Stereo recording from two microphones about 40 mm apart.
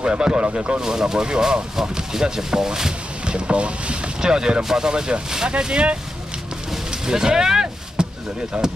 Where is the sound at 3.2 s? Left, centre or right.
Right.